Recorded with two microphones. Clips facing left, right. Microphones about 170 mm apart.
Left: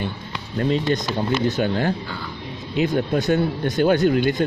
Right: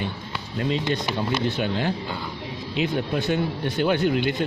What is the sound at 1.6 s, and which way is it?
Speech, 45° left (ahead or behind).